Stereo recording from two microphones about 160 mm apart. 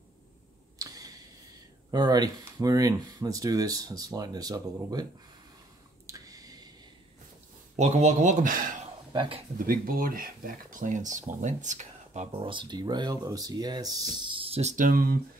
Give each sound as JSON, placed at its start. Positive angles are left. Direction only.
{"t": 0.7, "sound": "a sound", "side_deg": -20}
{"t": 1.9, "sound": "speech", "side_deg": -25}
{"t": 6.0, "sound": "a sound", "side_deg": -20}
{"t": 7.7, "sound": "speech", "side_deg": -45}
{"t": 9.1, "sound": "speech", "side_deg": -30}
{"t": 9.7, "sound": "speech", "side_deg": -65}
{"t": 12.3, "sound": "speech", "side_deg": -35}